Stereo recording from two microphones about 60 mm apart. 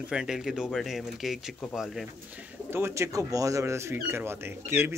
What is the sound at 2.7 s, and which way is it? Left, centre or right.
Speech, right.